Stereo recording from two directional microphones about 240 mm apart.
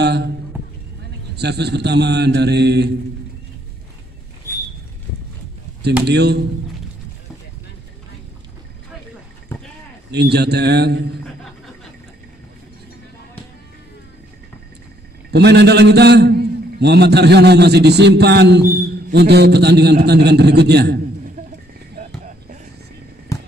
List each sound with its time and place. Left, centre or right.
0.0 s a sound: right
1.3 s a man's voice: right
6.0 s a man's voice: right
10.1 s a man's voice: right
15.3 s a man's voice: right
21.9 s a sound: right